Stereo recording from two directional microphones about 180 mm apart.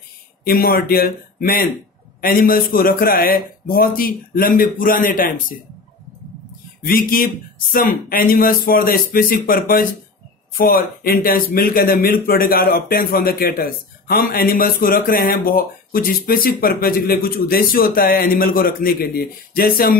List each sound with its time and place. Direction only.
0.5 s speech: 55° left (ahead or behind)
6.8 s speech: 50° left (ahead or behind)